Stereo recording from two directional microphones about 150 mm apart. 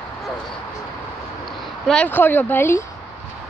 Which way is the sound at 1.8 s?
10° left (ahead or behind).